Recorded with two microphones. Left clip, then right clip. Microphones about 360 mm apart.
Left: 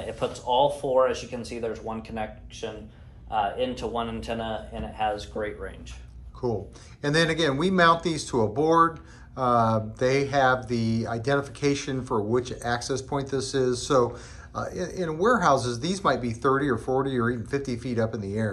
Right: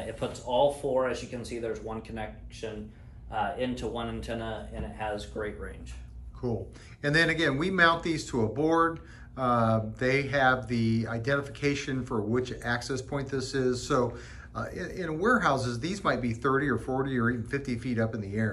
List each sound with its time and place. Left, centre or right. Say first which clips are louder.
0.2 s speech: left 3 dB; centre
3.3 s speech: left 5 dB; centre